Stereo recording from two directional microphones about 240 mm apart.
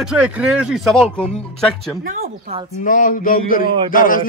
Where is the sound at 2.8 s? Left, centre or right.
Left.